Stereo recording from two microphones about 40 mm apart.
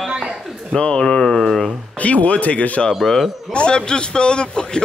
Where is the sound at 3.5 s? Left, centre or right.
Left.